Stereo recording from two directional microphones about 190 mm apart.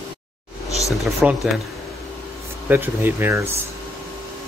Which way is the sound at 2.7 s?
10° right (ahead or behind).